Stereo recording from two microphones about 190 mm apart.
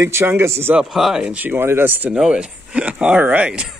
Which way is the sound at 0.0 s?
15° right (ahead or behind).